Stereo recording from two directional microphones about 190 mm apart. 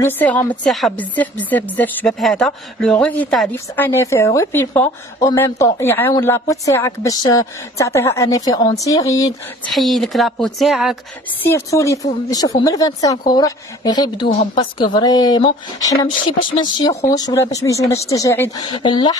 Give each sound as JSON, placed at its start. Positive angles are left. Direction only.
{"t": 0.0, "sound": "speech", "side_deg": 10}
{"t": 9.7, "sound": "speech", "side_deg": 0}
{"t": 11.4, "sound": "speech", "side_deg": 15}